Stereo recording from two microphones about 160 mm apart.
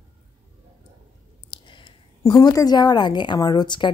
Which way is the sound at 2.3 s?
20° left (ahead or behind).